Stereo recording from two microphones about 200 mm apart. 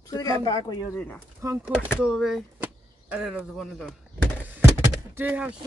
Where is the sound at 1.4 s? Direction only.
15° right (ahead or behind).